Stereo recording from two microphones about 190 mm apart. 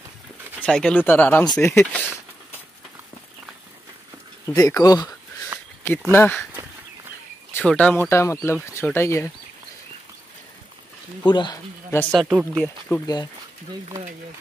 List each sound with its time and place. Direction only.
0.6 s speech: 5° left (ahead or behind)
4.6 s speech: 20° left (ahead or behind)
5.5 s a sound: 10° right (ahead or behind)
5.9 s speech: 10° left (ahead or behind)
7.5 s speech: 5° left (ahead or behind)
11.2 s speech: 25° left (ahead or behind)
12.1 s speech: centre (ahead or behind)
13.0 s speech: 20° left (ahead or behind)